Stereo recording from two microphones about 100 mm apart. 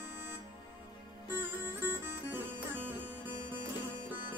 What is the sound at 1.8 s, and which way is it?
Music, 20° right (ahead or behind).